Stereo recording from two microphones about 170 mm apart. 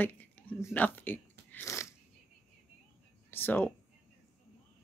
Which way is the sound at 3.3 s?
10° left (ahead or behind).